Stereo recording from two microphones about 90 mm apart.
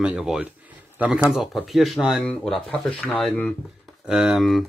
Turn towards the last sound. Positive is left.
turn(degrees=0)  # may be behind; listen again after turning